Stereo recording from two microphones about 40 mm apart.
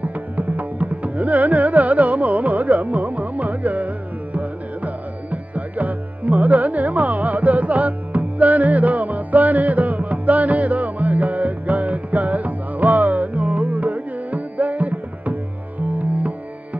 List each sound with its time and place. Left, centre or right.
0.0 s carnatic music: right
16.0 s music: right